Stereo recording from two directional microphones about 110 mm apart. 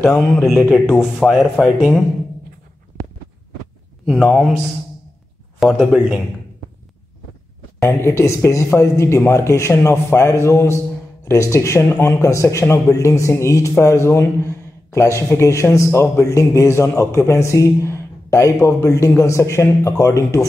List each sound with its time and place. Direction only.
0.0 s speech: 25° left (ahead or behind)
0.8 s speech: 5° right (ahead or behind)
4.0 s speech: centre (ahead or behind)
5.6 s speech: centre (ahead or behind)
7.8 s speech: 25° left (ahead or behind)